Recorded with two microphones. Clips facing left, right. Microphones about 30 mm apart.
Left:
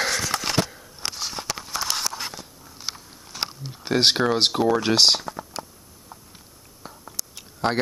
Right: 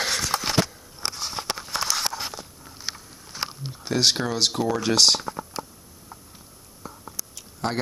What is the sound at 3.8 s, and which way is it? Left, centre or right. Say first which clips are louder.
Speech: left 3 dB; left.